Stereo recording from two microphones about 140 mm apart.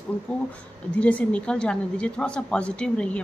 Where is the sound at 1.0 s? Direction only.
10° left (ahead or behind).